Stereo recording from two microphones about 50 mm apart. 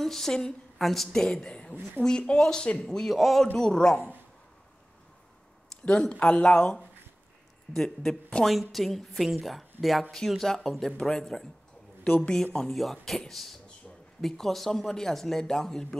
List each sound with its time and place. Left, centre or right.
0.0 s a woman's voice: centre
0.7 s a woman's voice: centre
6.1 s speech: left
7.7 s speech: centre
8.5 s a woman's voice: centre